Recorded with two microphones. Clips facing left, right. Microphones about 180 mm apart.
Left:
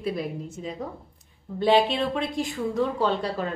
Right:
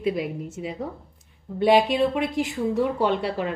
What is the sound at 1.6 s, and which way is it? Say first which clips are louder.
A woman's voice: right 2 dB; 10° right (ahead or behind).